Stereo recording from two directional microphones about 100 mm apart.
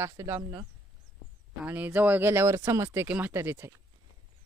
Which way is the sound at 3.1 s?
20° right (ahead or behind).